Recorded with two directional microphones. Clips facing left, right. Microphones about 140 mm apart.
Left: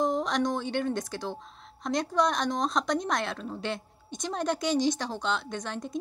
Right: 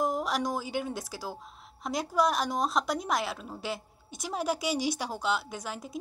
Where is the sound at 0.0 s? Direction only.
5° right (ahead or behind).